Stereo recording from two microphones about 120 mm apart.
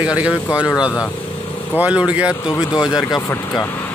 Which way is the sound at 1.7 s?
10° right (ahead or behind).